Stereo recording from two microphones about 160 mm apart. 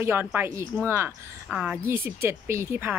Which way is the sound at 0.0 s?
15° right (ahead or behind).